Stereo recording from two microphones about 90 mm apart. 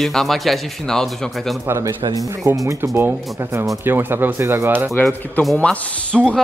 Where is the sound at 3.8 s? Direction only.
25° right (ahead or behind).